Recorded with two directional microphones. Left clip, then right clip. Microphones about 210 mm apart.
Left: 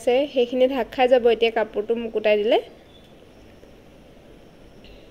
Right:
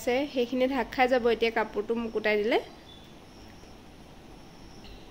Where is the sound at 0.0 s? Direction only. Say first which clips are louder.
Left 8 dB; centre (ahead or behind).